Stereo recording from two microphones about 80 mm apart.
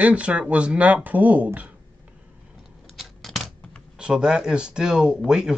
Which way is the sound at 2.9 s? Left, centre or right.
Centre.